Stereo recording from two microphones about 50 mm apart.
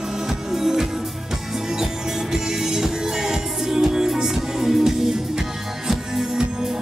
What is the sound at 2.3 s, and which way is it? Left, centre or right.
Music, centre.